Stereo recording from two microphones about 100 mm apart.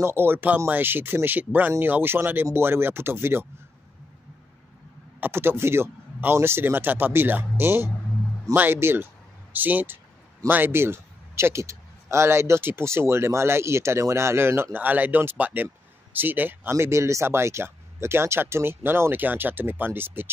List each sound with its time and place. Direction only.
0.0 s a man's voice: 25° right (ahead or behind)
5.2 s a man's voice: 25° right (ahead or behind)